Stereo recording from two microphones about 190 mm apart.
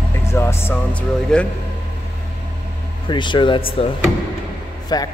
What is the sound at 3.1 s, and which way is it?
Speech, 25° left (ahead or behind).